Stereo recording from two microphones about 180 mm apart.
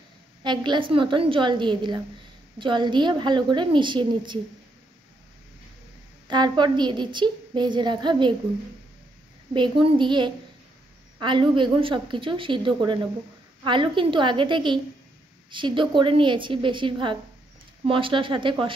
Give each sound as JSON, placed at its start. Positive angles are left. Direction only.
{"t": 0.4, "sound": "a woman's voice", "side_deg": -25}
{"t": 6.2, "sound": "a woman's voice", "side_deg": -25}
{"t": 9.5, "sound": "a woman's voice", "side_deg": -30}